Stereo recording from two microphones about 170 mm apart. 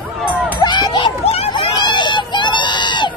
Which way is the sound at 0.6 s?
25° left (ahead or behind).